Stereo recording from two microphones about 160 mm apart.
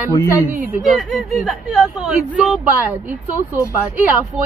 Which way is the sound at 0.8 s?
Centre (ahead or behind).